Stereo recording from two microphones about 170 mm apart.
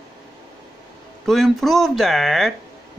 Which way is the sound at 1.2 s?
Centre (ahead or behind).